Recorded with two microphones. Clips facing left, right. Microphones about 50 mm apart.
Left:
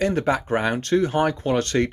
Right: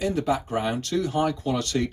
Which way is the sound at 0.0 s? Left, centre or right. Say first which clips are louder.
Left 3 dB; left.